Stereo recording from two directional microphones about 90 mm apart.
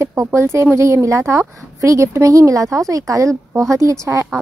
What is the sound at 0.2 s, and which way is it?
A woman's voice, 30° right (ahead or behind).